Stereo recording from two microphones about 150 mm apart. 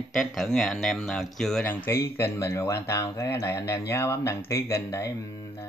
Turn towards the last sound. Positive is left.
turn(degrees=20)  # may be behind; listen again after turning